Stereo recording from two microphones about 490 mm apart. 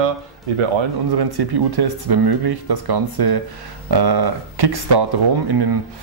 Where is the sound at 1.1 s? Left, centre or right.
Right.